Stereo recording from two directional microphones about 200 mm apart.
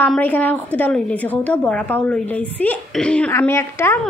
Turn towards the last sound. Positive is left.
turn(degrees=10)  # may be behind; listen again after turning